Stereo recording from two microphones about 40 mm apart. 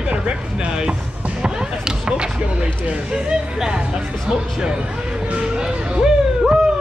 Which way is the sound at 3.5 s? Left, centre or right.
Centre.